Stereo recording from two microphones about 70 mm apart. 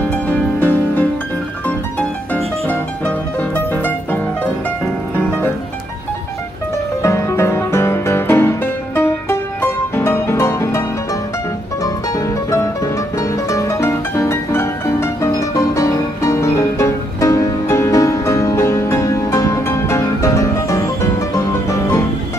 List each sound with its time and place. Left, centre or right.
0.1 s music: left
2.7 s music: left
7.0 s music: left
11.8 s music: left